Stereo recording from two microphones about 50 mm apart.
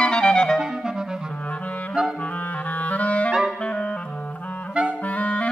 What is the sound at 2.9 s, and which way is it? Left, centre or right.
Clarinet, left.